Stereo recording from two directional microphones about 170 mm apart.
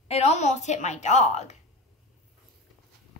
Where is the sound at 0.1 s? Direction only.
40° left (ahead or behind).